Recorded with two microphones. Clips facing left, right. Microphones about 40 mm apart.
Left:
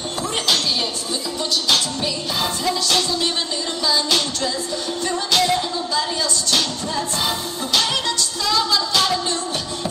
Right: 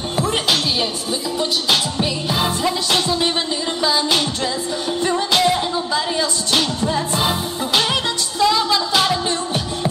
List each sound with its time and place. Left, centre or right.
1.4 s music: centre